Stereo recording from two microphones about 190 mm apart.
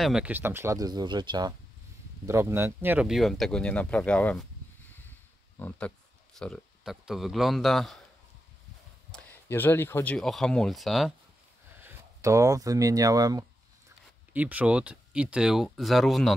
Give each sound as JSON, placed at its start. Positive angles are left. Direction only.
{"t": 0.0, "sound": "speech", "side_deg": -5}
{"t": 5.6, "sound": "speech", "side_deg": 10}
{"t": 9.1, "sound": "speech", "side_deg": 10}
{"t": 11.8, "sound": "speech", "side_deg": -15}
{"t": 14.3, "sound": "speech", "side_deg": -10}